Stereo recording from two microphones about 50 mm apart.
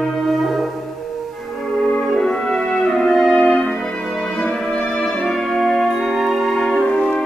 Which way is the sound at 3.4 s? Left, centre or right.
Left.